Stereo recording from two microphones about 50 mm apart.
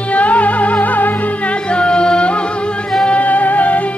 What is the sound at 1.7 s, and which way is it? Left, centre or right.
Music, centre.